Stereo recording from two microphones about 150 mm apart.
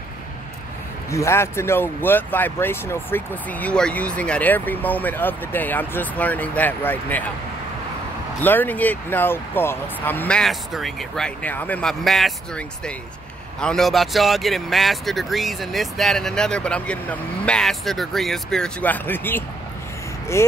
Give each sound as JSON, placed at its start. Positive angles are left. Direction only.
{"t": 1.1, "sound": "speech", "side_deg": 20}
{"t": 8.4, "sound": "speech", "side_deg": 10}